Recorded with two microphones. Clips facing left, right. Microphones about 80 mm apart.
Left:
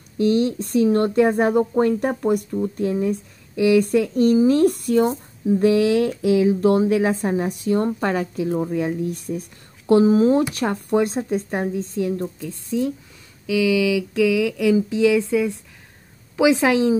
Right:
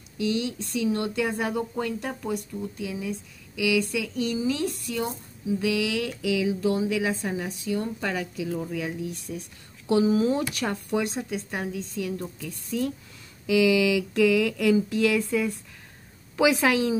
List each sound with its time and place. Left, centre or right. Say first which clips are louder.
0.2 s a woman's voice: left 9 dB; left
13.5 s a sound: left 2 dB; centre
16.3 s a woman's voice: left 5 dB; left